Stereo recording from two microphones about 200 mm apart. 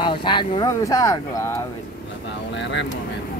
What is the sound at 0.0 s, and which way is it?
Speech, 25° left (ahead or behind).